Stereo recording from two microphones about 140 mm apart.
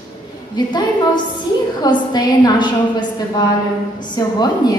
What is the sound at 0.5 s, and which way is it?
A woman's voice, 30° left (ahead or behind).